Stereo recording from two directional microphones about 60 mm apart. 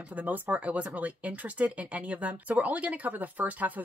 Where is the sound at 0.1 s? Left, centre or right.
Right.